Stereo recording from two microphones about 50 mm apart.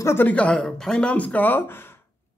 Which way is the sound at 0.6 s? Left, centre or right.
Centre.